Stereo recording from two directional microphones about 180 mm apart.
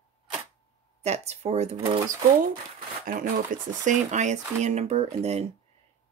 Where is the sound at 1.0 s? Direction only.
35° right (ahead or behind).